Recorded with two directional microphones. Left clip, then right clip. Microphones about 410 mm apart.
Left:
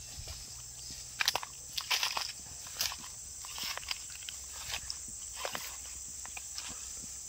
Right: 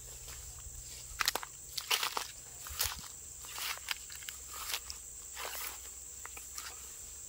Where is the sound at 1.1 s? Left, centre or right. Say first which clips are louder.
Left 2 dB; centre.